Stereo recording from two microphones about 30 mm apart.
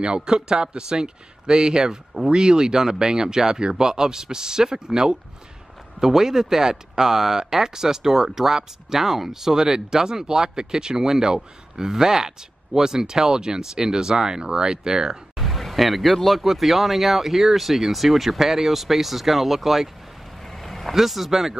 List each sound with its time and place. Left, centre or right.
0.0 s speech: right
15.3 s speech: centre
20.5 s vehicle: centre
20.9 s speech: centre